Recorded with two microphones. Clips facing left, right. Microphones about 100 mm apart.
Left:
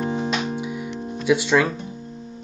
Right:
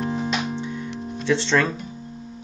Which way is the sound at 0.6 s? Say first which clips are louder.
Left 1 dB; 10° left (ahead or behind).